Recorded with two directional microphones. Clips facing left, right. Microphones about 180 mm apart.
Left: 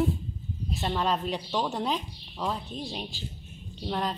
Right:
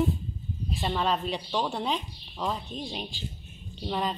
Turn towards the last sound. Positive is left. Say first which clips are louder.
# even
turn(degrees=0)  # may be behind; listen again after turning